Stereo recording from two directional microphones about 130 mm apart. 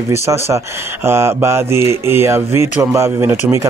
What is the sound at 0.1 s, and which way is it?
Speech, 20° right (ahead or behind).